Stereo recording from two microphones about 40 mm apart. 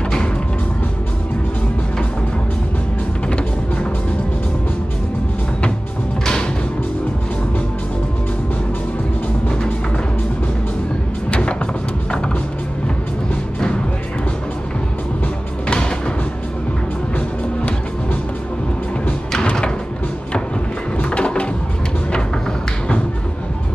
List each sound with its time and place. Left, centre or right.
11.2 s vehicle: left
19.4 s music: left
21.0 s a sound: left